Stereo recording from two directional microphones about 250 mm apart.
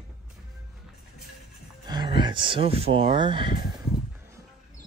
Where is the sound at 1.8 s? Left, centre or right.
Centre.